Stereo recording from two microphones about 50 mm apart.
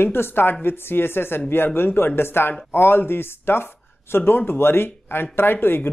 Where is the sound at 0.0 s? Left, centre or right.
Left.